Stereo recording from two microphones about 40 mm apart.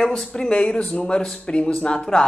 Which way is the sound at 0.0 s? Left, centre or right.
Left.